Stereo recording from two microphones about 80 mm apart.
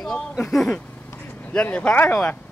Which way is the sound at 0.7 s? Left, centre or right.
Left.